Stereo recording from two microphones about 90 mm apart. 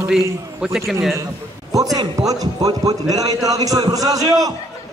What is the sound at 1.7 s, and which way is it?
A man's voice, 40° right (ahead or behind).